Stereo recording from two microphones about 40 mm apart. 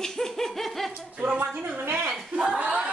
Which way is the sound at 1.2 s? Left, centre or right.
Right.